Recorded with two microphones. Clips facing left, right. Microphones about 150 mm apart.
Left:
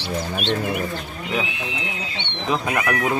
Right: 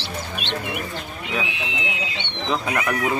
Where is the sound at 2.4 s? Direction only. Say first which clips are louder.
Left 1 dB; 5° left (ahead or behind).